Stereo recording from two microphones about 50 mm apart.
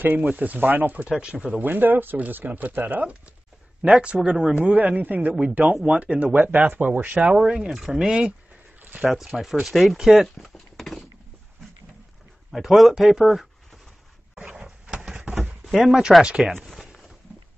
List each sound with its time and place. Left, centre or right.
0.0 s speech: right
1.7 s speech: right
6.3 s speech: right
7.3 s speech: centre
8.8 s zipper: right
9.1 s speech: centre
9.9 s a sound: centre
12.4 s speech: centre
14.4 s a sound: centre
15.8 s speech: centre
16.5 s a sound: centre